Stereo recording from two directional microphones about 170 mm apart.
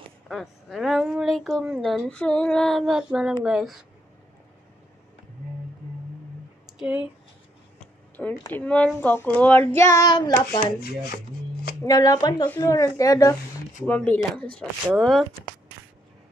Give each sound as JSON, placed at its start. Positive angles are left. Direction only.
{"t": 0.3, "sound": "speech", "side_deg": 0}
{"t": 6.6, "sound": "a sound", "side_deg": -5}
{"t": 7.8, "sound": "speech", "side_deg": 10}
{"t": 11.8, "sound": "speech", "side_deg": 20}